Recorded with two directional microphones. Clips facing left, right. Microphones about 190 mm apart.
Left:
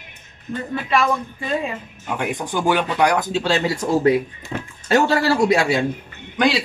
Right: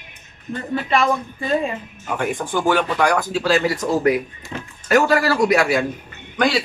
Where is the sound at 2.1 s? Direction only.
15° left (ahead or behind).